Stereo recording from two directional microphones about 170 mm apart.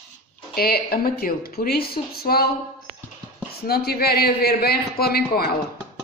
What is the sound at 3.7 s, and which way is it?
A man's voice, 65° left (ahead or behind).